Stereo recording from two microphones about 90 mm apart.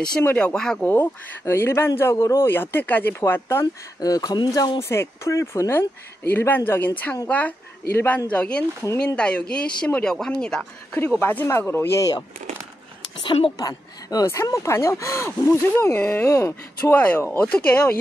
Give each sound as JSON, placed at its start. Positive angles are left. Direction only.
{"t": 0.2, "sound": "speech", "side_deg": 20}
{"t": 0.6, "sound": "speech", "side_deg": 5}
{"t": 0.8, "sound": "speech", "side_deg": 25}
{"t": 4.0, "sound": "speech", "side_deg": 45}
{"t": 4.8, "sound": "a man's voice", "side_deg": 30}
{"t": 11.1, "sound": "speech", "side_deg": 25}
{"t": 13.2, "sound": "a woman's voice", "side_deg": 70}
{"t": 13.6, "sound": "speech", "side_deg": 45}
{"t": 14.2, "sound": "speech", "side_deg": 30}
{"t": 16.3, "sound": "speech", "side_deg": 35}
{"t": 16.9, "sound": "speech", "side_deg": 20}